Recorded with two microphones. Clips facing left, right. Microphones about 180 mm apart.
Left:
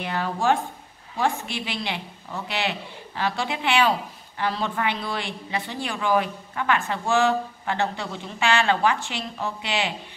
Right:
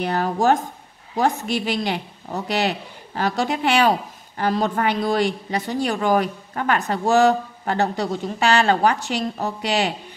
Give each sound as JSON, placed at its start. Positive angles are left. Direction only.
{"t": 0.0, "sound": "a woman's voice", "side_deg": -40}